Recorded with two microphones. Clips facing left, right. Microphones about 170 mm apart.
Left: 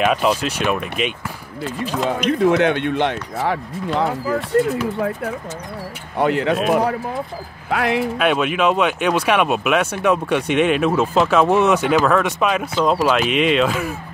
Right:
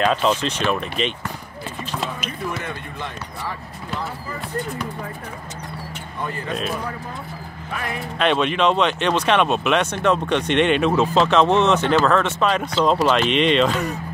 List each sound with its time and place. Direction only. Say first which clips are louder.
0.0 s speech: left 2 dB; 10° left (ahead or behind)
2.0 s speech: left 12 dB; 80° left
8.2 s speech: right 3 dB; 5° left (ahead or behind)